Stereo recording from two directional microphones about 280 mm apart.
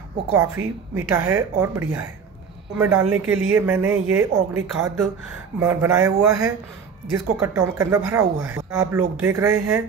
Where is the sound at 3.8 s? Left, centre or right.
Centre.